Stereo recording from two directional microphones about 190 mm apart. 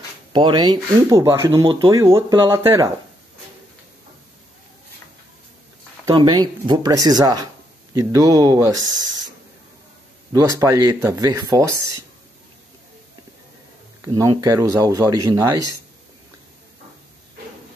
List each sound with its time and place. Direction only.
0.3 s speech: 25° right (ahead or behind)
6.0 s speech: 20° right (ahead or behind)
10.3 s speech: 15° right (ahead or behind)
14.0 s speech: 20° right (ahead or behind)